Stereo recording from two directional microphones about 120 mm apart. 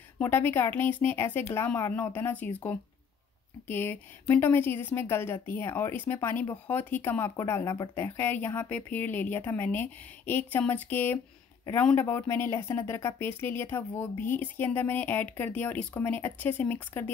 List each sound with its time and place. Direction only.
0.2 s speech: 20° left (ahead or behind)